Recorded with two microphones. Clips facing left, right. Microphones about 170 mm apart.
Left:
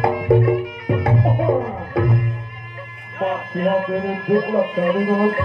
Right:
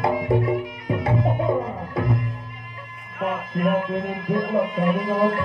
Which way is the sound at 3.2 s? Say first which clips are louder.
Left 3 dB; 35° left (ahead or behind).